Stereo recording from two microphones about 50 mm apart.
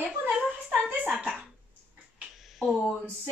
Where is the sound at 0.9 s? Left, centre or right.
Right.